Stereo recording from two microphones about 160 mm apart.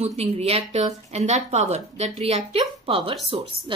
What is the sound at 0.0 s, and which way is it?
A woman's voice, 40° right (ahead or behind).